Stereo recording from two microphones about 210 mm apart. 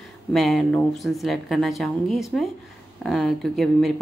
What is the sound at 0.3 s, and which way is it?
Speech, centre (ahead or behind).